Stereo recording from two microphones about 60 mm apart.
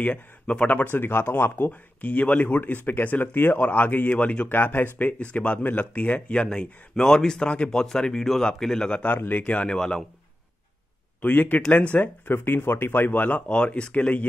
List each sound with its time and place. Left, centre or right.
0.0 s speech: left
0.8 s speech: left; by 9.0 s centre
9.0 s speech: left
9.7 s speech: centre
11.2 s speech: left